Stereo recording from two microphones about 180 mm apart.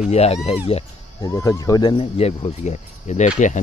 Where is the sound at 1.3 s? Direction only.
20° left (ahead or behind); by 3.3 s 40° left (ahead or behind).